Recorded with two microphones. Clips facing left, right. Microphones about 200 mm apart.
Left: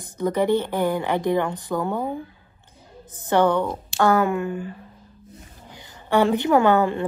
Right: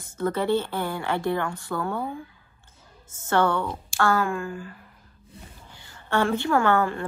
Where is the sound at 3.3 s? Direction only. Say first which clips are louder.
Left 4 dB; 15° left (ahead or behind).